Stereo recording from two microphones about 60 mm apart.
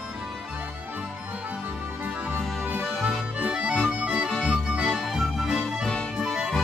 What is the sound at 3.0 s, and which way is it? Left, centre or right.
Accordion, centre.